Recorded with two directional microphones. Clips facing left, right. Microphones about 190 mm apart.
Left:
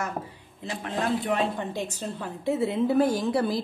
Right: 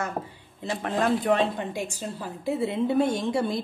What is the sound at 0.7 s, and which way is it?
Speech, 40° right (ahead or behind).